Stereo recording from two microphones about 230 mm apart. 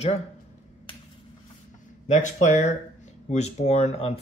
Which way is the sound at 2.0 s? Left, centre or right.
Left.